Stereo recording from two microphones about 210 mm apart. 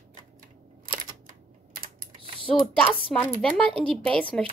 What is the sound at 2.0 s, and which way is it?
Typing, 25° right (ahead or behind).